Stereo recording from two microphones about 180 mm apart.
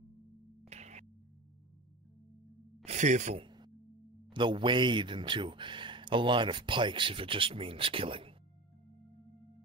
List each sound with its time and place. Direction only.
0.7 s music: 40° right (ahead or behind)
2.8 s speech: 40° right (ahead or behind)
3.4 s music: 25° right (ahead or behind)
4.3 s speech: 25° right (ahead or behind)